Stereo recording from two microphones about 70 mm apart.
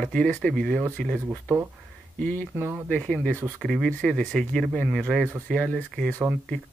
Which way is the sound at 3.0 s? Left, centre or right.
Centre.